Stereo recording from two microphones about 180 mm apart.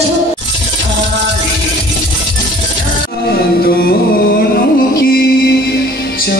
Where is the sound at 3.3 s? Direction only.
60° left (ahead or behind).